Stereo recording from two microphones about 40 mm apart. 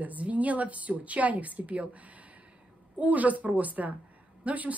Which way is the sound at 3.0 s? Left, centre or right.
Right.